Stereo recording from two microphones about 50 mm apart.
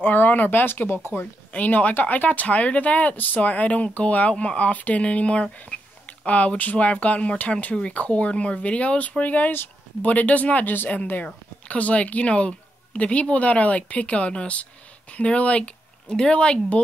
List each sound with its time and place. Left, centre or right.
0.0 s speech: left
1.5 s speech: left